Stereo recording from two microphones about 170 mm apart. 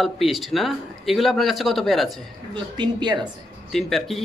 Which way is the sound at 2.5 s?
25° right (ahead or behind).